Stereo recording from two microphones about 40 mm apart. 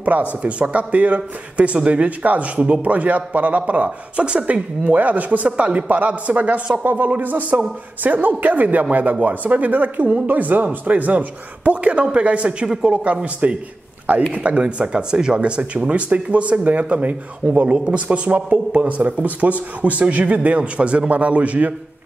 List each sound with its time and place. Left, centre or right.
0.0 s speech: right
6.8 s speech: right